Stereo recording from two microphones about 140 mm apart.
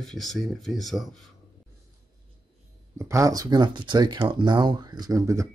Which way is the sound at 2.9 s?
20° right (ahead or behind).